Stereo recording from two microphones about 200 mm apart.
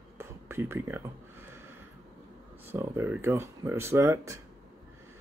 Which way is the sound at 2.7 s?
10° right (ahead or behind).